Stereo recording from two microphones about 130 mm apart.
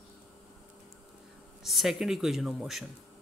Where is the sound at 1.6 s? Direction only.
Centre (ahead or behind).